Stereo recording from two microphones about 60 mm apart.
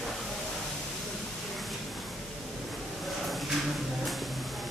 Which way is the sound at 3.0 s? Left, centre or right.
Centre.